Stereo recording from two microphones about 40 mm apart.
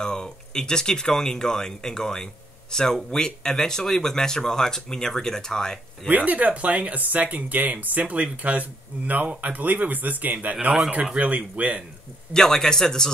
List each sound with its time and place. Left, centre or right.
0.0 s speech: centre
6.0 s speech: right
12.4 s speech: centre